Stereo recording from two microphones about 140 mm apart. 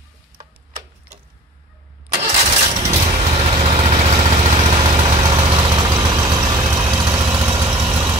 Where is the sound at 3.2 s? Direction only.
40° right (ahead or behind).